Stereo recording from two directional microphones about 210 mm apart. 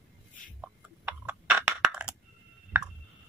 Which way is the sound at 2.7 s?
10° right (ahead or behind).